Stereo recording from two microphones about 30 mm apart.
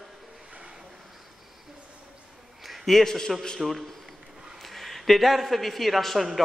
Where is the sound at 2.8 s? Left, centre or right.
Centre.